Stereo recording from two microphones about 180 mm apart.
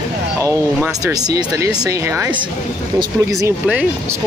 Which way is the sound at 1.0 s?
20° right (ahead or behind).